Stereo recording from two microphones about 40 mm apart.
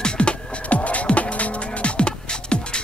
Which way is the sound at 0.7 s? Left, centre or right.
Left.